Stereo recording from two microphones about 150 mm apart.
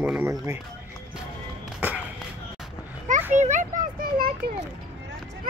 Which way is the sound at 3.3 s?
55° right (ahead or behind).